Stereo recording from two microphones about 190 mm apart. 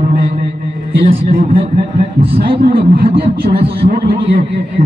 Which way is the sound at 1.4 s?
30° right (ahead or behind).